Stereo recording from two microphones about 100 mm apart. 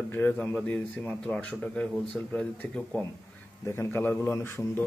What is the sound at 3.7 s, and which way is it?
A man's voice, 25° left (ahead or behind).